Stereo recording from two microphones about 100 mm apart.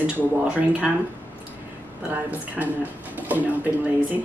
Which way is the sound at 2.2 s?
15° right (ahead or behind).